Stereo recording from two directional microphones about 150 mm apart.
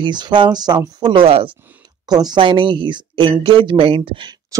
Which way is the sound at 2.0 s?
25° right (ahead or behind).